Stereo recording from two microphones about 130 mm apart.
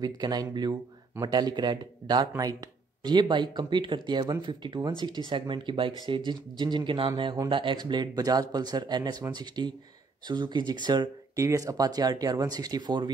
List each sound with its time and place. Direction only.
0.0 s speech: 30° right (ahead or behind)